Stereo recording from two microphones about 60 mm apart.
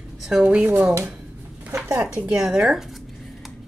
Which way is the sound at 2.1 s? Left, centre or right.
Centre.